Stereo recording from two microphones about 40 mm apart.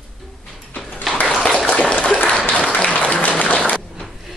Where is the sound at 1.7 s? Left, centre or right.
Left.